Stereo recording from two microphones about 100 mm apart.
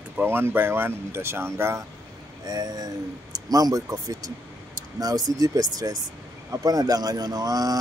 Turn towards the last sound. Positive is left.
turn(degrees=-40)  # may be behind; listen again after turning